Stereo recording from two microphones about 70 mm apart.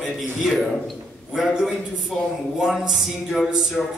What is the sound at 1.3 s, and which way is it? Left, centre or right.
A man's voice, centre.